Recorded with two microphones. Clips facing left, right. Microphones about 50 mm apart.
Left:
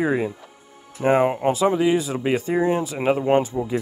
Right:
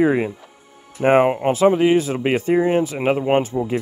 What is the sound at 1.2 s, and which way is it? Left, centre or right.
Speech, right.